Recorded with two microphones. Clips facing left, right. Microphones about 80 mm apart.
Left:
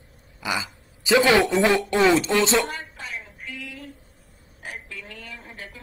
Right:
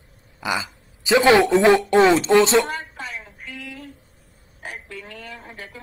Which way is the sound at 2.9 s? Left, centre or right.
Right.